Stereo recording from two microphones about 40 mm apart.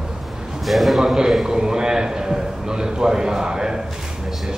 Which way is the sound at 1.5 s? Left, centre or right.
Centre.